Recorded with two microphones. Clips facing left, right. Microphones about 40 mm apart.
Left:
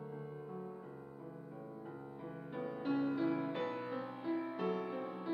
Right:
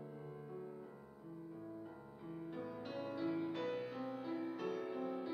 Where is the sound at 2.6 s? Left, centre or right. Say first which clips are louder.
Left 11 dB; centre.